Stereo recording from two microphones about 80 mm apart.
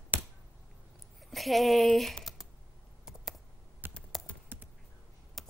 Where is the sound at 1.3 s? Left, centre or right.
Centre.